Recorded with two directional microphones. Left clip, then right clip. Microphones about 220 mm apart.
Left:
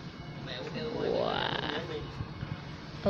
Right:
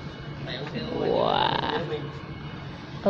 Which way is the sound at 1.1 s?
5° right (ahead or behind).